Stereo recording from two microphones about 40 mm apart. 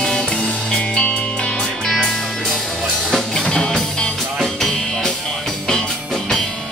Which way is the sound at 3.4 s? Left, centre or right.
Left.